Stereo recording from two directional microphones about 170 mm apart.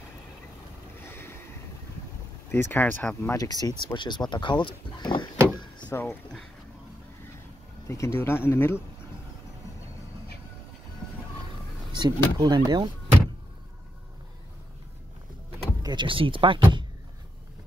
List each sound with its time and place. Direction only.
0.9 s boat: 15° left (ahead or behind)
2.5 s speech: 10° left (ahead or behind)
3.3 s speech: 20° left (ahead or behind)
5.9 s speech: 15° left (ahead or behind)
7.9 s speech: 15° left (ahead or behind)
12.0 s speech: 25° right (ahead or behind)
15.8 s speech: 25° right (ahead or behind)